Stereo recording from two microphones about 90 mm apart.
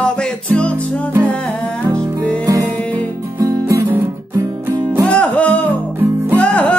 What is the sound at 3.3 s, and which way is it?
Music, 35° right (ahead or behind).